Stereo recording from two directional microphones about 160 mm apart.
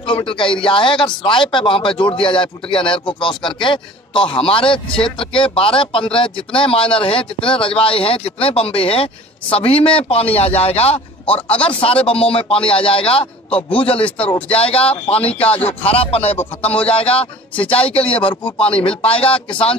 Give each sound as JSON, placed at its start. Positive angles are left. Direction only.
{"t": 0.0, "sound": "speech", "side_deg": 30}
{"t": 14.5, "sound": "speech", "side_deg": 35}
{"t": 16.3, "sound": "speech", "side_deg": 10}
{"t": 16.8, "sound": "speech", "side_deg": 35}